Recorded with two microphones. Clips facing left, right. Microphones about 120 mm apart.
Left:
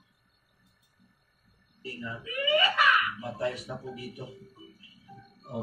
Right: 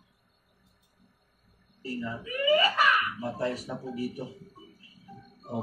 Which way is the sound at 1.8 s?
35° right (ahead or behind).